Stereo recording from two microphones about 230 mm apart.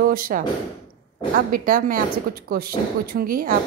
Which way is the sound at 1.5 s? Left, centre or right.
Right.